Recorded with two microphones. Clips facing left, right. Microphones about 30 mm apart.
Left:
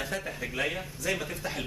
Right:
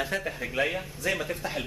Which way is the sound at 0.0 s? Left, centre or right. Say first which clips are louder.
Right 3 dB; centre.